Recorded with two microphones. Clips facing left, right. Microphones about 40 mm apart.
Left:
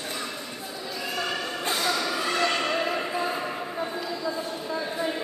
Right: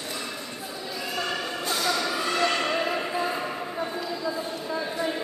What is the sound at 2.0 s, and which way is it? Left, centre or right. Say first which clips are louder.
Basketball bounce: even; centre.